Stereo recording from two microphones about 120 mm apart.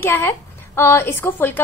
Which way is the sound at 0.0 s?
20° left (ahead or behind).